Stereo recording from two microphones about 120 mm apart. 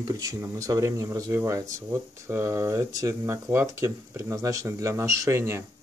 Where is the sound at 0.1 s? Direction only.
30° right (ahead or behind).